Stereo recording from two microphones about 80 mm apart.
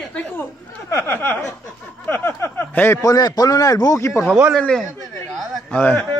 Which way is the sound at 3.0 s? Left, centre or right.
Left.